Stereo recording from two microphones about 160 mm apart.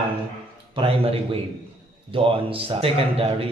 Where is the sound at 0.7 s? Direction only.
35° right (ahead or behind).